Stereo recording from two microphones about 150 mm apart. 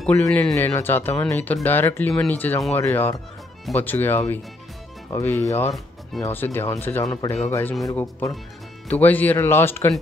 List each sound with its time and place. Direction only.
0.0 s speech: 10° left (ahead or behind)